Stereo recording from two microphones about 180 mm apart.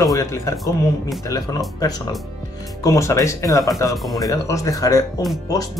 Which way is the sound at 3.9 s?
Centre (ahead or behind).